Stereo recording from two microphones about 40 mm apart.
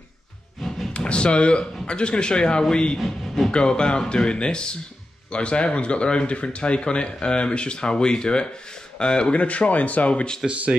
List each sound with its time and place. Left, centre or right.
0.6 s a sound: centre
0.9 s speech: left
3.0 s speech: centre
3.5 s speech: left
10.4 s speech: centre